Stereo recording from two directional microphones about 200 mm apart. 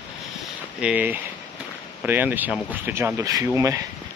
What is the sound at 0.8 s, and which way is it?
Speech, 5° right (ahead or behind).